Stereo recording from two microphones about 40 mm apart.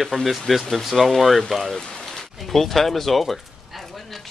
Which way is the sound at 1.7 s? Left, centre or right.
Centre.